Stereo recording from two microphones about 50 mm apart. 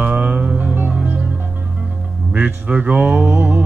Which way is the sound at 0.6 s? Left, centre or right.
Right.